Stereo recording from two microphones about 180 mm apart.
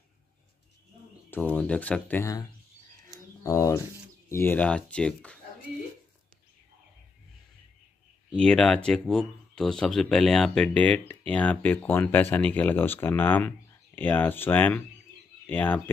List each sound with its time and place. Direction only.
1.3 s speech: 10° left (ahead or behind)
3.4 s speech: 15° left (ahead or behind)
8.3 s speech: 5° left (ahead or behind)